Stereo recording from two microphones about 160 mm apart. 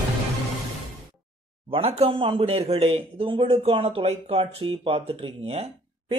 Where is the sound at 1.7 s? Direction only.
40° right (ahead or behind).